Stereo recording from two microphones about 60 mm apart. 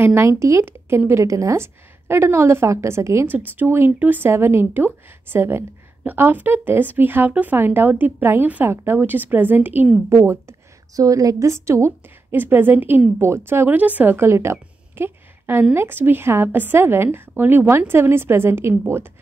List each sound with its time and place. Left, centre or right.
0.0 s a woman's voice: right
0.4 s a woman's voice: right
1.2 s a woman's voice: right
1.6 s a woman's voice: right
3.3 s a woman's voice: right
4.3 s a woman's voice: right
11.0 s a woman's voice: right
12.3 s a woman's voice: right
13.7 s speech: right
14.1 s a sound: right
15.7 s a woman's voice: right